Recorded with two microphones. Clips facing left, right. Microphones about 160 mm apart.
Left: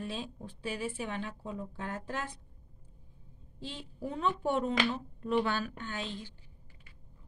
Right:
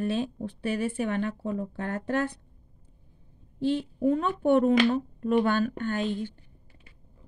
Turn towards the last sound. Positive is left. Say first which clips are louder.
# right 11 dB
turn(degrees=-55)  # may be behind; listen again after turning